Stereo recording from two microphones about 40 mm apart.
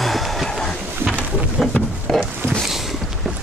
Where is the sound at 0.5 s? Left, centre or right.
Centre.